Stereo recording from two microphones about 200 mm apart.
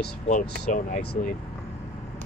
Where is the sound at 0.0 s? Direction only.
50° left (ahead or behind).